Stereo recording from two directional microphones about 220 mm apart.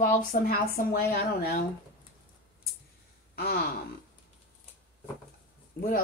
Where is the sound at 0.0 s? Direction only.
40° left (ahead or behind).